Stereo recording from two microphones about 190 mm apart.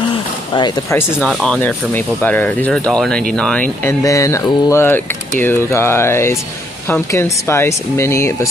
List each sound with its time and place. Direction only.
0.9 s speech: 5° left (ahead or behind)
4.0 s speech: 15° left (ahead or behind)